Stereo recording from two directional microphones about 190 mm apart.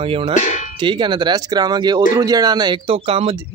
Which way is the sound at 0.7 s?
25° right (ahead or behind).